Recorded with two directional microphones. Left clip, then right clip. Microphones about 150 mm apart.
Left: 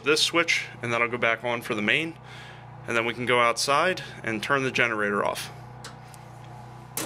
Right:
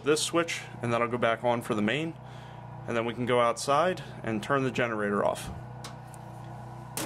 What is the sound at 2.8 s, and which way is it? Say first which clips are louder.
Speech: left 4 dB; 15° right (ahead or behind).